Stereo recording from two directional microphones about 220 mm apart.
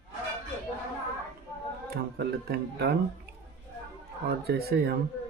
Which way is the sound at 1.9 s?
45° right (ahead or behind).